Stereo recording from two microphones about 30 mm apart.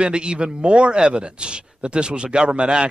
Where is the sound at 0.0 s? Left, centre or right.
Right.